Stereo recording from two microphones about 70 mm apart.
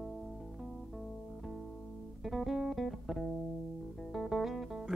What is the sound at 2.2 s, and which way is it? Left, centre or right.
Music, centre.